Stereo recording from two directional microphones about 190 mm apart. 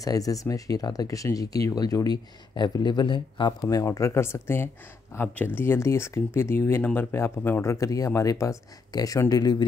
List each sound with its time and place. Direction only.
0.0 s speech: 20° left (ahead or behind)